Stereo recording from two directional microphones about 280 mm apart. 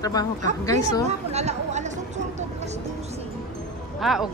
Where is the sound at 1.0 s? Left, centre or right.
Right.